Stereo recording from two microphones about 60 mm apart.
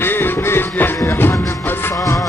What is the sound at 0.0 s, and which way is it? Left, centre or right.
Music, left.